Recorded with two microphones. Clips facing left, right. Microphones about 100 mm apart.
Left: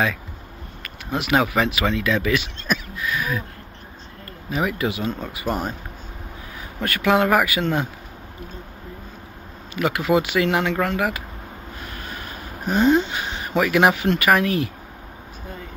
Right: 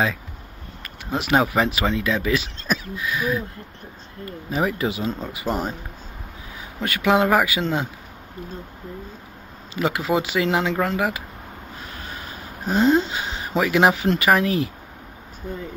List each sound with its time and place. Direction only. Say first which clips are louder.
1.1 s speech: even; 30° right (ahead or behind)
4.5 s speech: even; 30° right (ahead or behind)
6.8 s speech: even; 15° right (ahead or behind)
9.8 s speech: left 2 dB; 25° right (ahead or behind)
13.1 s speech: left 1 dB; 25° right (ahead or behind)